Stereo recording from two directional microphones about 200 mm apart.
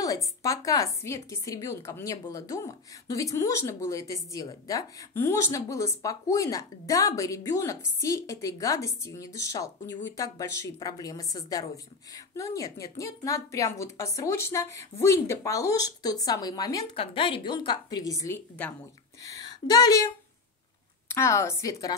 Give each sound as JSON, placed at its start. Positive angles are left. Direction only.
{"t": 0.7, "sound": "a woman's voice", "side_deg": 15}
{"t": 21.1, "sound": "a woman's voice", "side_deg": 15}